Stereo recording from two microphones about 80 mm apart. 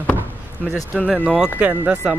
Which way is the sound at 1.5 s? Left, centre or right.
Centre.